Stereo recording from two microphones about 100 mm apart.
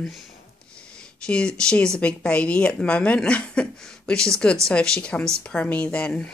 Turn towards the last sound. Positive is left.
turn(degrees=10)  # may be behind; listen again after turning